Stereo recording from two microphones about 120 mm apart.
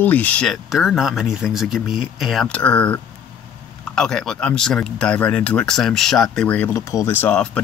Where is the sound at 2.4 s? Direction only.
10° left (ahead or behind).